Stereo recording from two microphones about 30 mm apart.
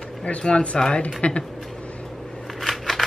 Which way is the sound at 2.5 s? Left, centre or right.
Centre.